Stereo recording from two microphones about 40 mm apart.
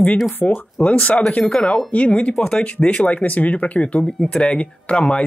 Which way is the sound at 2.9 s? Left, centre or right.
Left.